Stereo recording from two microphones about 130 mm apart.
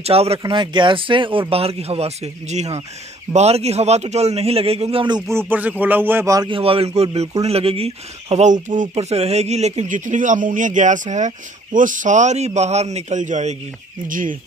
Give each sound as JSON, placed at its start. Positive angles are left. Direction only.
{"t": 0.0, "sound": "a man's voice", "side_deg": -50}
{"t": 0.4, "sound": "a man's voice", "side_deg": -35}
{"t": 5.3, "sound": "speech", "side_deg": -15}
{"t": 6.5, "sound": "a man's voice", "side_deg": -45}
{"t": 8.9, "sound": "speech", "side_deg": -50}
{"t": 14.0, "sound": "speech", "side_deg": -90}